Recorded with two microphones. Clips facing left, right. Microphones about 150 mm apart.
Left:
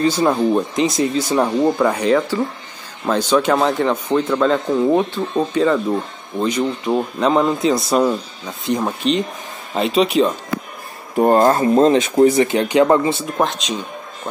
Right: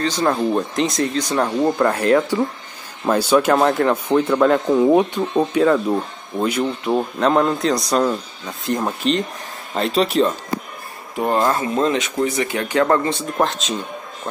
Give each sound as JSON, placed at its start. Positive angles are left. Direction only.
{"t": 0.0, "sound": "speech", "side_deg": 10}
{"t": 11.1, "sound": "speech", "side_deg": 40}
{"t": 13.1, "sound": "speech", "side_deg": 0}